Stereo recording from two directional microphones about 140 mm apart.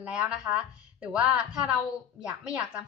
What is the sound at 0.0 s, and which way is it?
A woman's voice, 5° right (ahead or behind).